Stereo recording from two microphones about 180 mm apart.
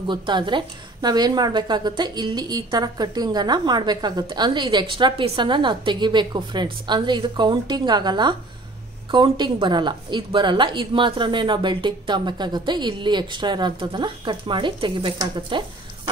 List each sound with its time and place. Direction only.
0.1 s a woman's voice: 25° right (ahead or behind)